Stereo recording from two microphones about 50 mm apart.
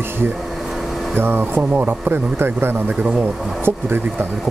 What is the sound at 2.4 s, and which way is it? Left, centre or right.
Speech, right.